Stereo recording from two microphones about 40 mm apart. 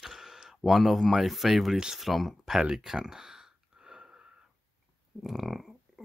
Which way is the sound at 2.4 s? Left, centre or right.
Centre.